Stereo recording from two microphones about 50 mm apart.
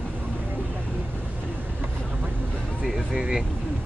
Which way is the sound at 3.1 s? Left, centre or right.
Centre.